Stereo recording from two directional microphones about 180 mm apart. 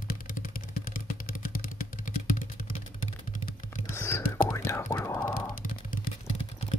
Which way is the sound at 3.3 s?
45° left (ahead or behind).